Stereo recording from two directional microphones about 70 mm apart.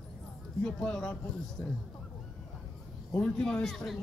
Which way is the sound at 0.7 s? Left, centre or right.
Centre.